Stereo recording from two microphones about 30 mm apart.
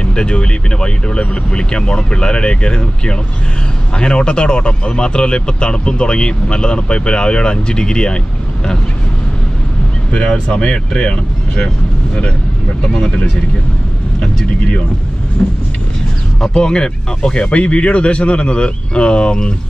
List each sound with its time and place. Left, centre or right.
0.0 s speech: left
10.7 s speech: left
15.4 s speech: centre
17.5 s speech: left